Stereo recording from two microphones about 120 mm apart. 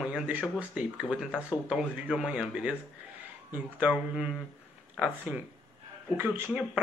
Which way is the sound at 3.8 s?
5° right (ahead or behind).